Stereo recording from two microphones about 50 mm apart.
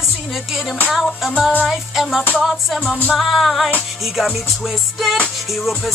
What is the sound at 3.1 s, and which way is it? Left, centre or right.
Music, centre.